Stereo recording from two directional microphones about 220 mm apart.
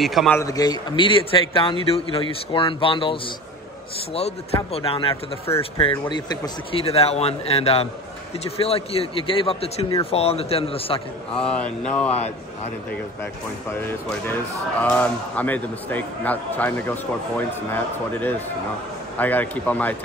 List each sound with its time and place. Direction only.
0.0 s mantra: centre (ahead or behind)
0.4 s a man's voice: 15° left (ahead or behind)
11.3 s mantra: 5° left (ahead or behind)
13.7 s a man's voice: 10° left (ahead or behind)
19.1 s a man's voice: 10° left (ahead or behind)